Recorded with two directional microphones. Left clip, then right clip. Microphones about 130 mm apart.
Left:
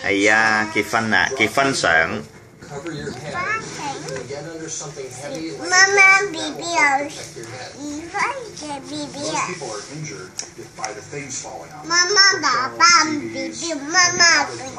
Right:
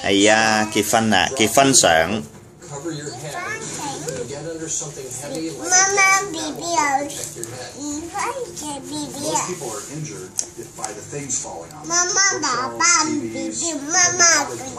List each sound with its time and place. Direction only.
0.0 s speech: 60° right (ahead or behind)
5.7 s a child's voice: 25° right (ahead or behind)
8.9 s a child's voice: 30° right (ahead or behind)
11.9 s a child's voice: 30° right (ahead or behind)